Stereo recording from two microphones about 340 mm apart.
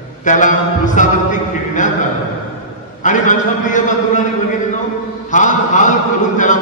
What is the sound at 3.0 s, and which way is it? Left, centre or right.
A man's voice, left.